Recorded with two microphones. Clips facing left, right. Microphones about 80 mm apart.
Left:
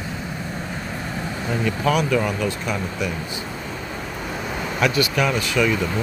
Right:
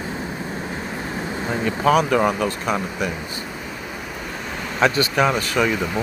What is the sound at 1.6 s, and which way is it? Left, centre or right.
Speech, right.